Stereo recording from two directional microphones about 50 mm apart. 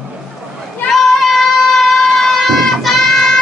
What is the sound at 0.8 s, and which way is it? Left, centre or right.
Child singing, centre.